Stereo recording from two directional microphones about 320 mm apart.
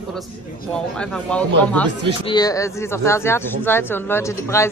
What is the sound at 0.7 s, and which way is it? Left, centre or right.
Speech, centre.